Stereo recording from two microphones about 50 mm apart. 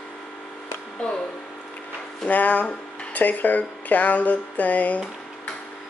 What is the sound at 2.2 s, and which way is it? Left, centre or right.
Speech, left.